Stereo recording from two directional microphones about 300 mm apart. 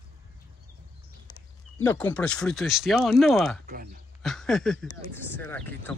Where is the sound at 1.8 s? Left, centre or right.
Centre.